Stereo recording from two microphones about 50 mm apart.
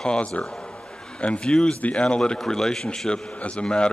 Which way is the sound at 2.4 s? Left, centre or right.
Centre.